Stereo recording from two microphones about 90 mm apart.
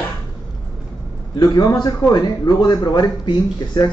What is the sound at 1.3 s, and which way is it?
A man's voice, 50° left (ahead or behind).